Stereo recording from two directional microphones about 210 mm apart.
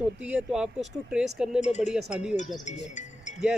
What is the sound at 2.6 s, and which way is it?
Speech, 35° left (ahead or behind).